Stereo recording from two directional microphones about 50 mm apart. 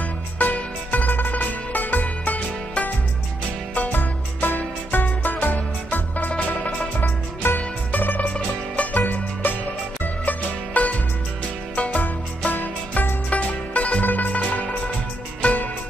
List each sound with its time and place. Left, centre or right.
0.4 s music: left
7.4 s music: left
9.0 s music: left
10.2 s music: left
13.3 s music: left